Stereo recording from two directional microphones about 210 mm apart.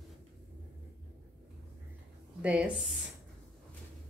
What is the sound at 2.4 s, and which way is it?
Speech, 5° right (ahead or behind).